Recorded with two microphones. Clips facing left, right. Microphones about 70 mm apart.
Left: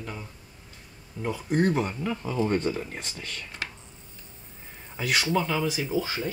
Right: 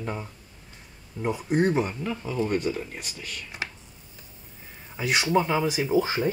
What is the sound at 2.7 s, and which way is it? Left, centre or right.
Speech, left.